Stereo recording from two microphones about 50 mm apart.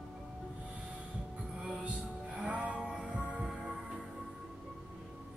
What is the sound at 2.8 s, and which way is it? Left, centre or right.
Music, centre.